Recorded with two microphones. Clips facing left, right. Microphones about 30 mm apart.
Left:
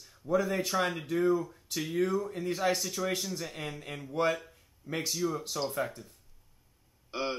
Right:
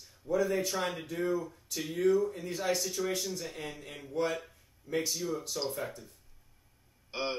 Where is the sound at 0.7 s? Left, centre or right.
Centre.